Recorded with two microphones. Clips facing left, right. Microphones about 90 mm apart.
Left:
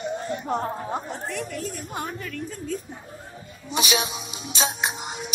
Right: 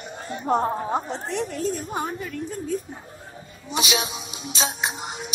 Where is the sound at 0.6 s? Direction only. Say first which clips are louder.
Right 4 dB; 25° right (ahead or behind).